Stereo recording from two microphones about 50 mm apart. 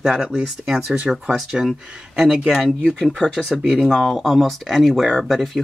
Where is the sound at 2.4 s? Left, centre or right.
Centre.